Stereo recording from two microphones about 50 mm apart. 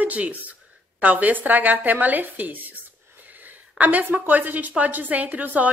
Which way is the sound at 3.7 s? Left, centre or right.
Right.